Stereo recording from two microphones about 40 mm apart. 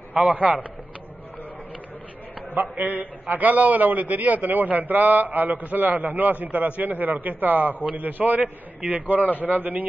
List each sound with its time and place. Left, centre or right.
0.1 s a man's voice: right
2.7 s a man's voice: right